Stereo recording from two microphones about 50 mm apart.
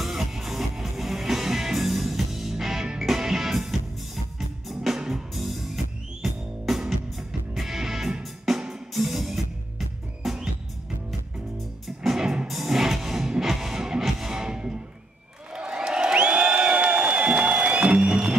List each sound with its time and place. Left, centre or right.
0.0 s music: centre
12.2 s music: centre
12.4 s music: centre
15.5 s crowd: centre